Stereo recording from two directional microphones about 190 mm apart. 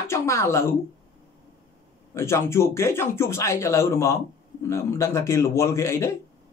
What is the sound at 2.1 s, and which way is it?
Speech, 15° left (ahead or behind).